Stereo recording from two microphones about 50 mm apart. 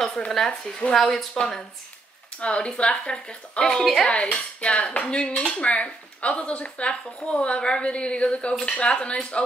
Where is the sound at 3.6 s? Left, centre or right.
Centre.